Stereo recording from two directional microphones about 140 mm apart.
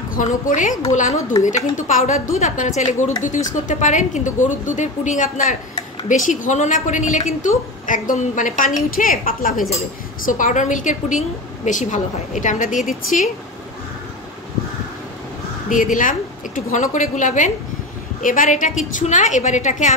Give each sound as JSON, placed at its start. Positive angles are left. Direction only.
{"t": 0.1, "sound": "a woman's voice", "side_deg": 65}
{"t": 10.2, "sound": "a woman's voice", "side_deg": 70}
{"t": 15.7, "sound": "a woman's voice", "side_deg": 70}